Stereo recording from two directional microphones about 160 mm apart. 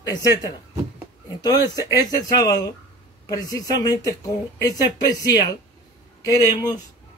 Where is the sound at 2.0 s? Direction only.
25° left (ahead or behind).